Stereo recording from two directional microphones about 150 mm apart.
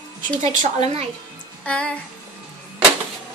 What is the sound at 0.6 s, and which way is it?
Speech, 45° right (ahead or behind).